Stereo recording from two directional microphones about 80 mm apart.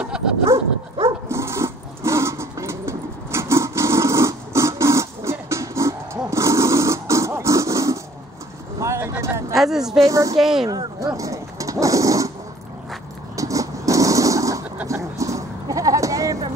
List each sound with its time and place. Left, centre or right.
0.1 s dog: centre
1.0 s dog: right
8.7 s a sound: right
9.5 s speech: centre
10.0 s speech: right
10.4 s speech: centre
11.1 s dog: right
13.4 s a sound: right